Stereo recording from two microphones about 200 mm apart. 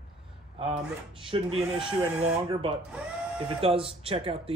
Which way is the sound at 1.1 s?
25° right (ahead or behind).